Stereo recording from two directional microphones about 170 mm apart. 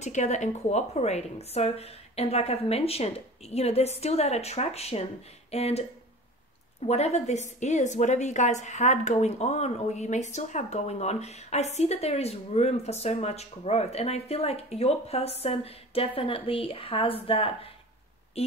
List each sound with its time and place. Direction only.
0.0 s speech: 45° left (ahead or behind)
6.9 s speech: 40° left (ahead or behind)